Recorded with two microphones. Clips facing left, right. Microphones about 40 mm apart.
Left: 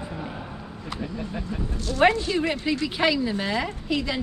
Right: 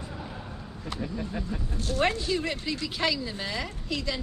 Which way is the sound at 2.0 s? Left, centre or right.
Left.